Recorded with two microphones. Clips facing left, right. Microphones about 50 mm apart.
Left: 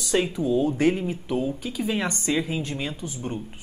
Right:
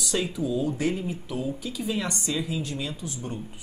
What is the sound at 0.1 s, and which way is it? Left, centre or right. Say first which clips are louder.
Speech: left 5 dB; left.